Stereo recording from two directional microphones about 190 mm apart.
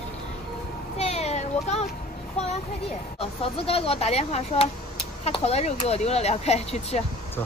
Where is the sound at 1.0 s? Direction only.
35° left (ahead or behind).